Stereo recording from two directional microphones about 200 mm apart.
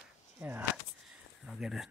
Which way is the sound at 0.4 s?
10° right (ahead or behind).